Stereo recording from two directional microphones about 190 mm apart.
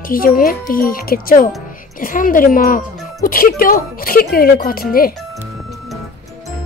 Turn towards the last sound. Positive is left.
turn(degrees=50)  # may be behind; listen again after turning